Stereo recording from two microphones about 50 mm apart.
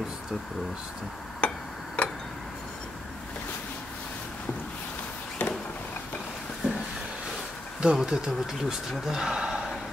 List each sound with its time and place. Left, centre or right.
1.4 s clock: left
2.0 s tick-tock: left
5.4 s a sound: left
7.8 s speech: centre